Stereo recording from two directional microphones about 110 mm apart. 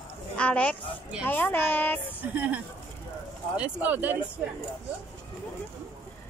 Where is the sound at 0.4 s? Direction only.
10° left (ahead or behind).